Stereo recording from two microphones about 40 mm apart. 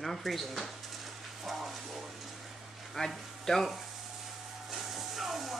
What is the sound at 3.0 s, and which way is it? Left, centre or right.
Speech, centre.